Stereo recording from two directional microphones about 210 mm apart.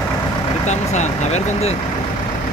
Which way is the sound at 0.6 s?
35° left (ahead or behind).